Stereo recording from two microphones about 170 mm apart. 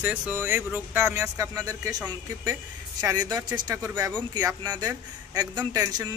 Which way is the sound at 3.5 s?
10° right (ahead or behind).